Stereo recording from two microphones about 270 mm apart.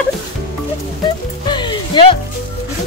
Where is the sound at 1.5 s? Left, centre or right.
Centre.